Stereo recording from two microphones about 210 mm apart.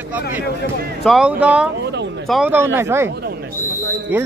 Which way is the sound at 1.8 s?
55° right (ahead or behind).